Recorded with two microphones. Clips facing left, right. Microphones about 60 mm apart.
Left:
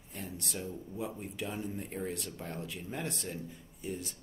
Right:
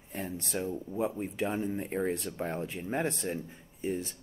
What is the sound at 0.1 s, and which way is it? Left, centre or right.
Speech, right.